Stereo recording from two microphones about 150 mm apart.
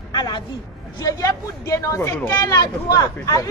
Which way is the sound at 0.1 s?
25° left (ahead or behind).